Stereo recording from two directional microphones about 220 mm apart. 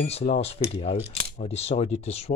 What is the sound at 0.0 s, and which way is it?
Speech, 30° left (ahead or behind).